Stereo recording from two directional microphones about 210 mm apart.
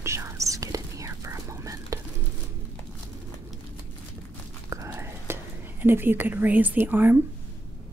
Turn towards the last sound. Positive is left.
turn(degrees=-10)  # may be behind; listen again after turning